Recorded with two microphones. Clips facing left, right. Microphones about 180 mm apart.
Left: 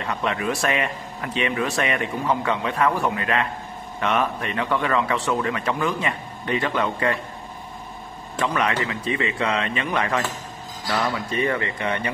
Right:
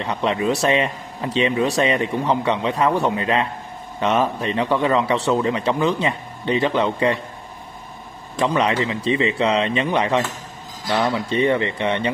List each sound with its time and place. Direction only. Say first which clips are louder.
0.0 s speech: right 4 dB; 25° right (ahead or behind)
8.5 s speech: right 4 dB; 25° right (ahead or behind)